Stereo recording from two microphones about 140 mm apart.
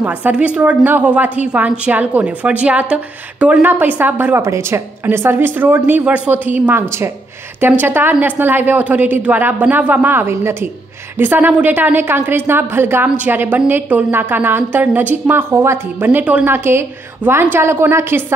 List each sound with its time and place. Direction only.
0.0 s a woman's voice: 10° right (ahead or behind)